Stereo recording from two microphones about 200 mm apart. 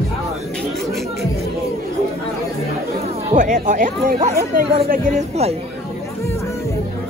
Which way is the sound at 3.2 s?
40° right (ahead or behind).